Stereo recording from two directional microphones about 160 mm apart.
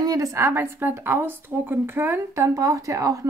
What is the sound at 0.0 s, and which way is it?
A woman's voice, 20° right (ahead or behind).